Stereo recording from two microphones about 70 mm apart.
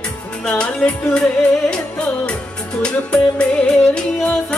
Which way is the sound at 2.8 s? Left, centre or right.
Centre.